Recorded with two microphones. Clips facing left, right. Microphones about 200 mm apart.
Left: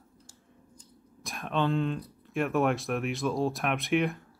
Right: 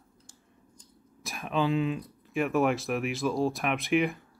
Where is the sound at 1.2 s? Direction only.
5° right (ahead or behind).